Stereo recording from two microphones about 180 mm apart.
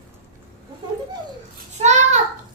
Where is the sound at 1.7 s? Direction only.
40° right (ahead or behind).